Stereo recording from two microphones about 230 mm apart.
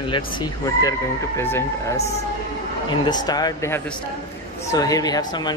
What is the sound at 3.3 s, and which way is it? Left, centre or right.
Speech, centre.